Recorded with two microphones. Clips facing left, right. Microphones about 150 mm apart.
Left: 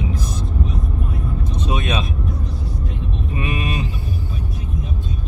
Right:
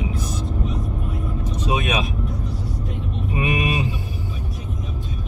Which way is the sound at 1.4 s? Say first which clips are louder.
Right 1 dB; 10° right (ahead or behind).